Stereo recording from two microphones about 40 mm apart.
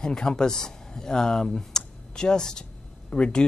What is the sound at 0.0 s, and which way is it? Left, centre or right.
Speech, left.